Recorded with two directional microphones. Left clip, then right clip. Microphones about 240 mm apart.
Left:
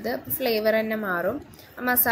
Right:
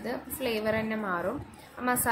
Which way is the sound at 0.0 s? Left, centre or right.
Centre.